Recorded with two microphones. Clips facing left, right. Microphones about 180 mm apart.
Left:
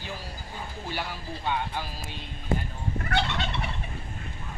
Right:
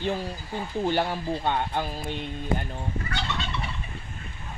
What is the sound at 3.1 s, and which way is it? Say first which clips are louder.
Gobble: left 8 dB; 65° left (ahead or behind).